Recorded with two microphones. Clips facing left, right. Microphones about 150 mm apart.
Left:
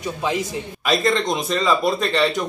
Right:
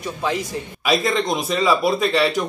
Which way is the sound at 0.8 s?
Centre (ahead or behind).